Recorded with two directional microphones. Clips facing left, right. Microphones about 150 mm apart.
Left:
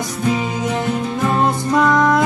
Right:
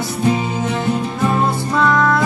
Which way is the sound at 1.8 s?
15° left (ahead or behind).